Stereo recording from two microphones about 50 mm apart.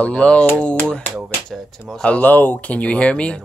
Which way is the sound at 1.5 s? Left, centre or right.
Centre.